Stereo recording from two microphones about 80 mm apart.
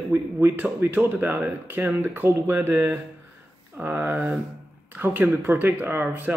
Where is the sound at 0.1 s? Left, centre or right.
Right.